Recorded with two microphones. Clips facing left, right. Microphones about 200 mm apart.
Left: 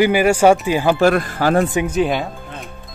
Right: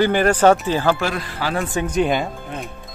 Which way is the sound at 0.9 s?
50° left (ahead or behind).